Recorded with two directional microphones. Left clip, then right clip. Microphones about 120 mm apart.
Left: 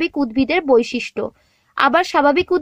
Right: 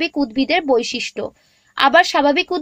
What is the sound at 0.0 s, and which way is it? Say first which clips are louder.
A woman's voice: even; 50° left (ahead or behind).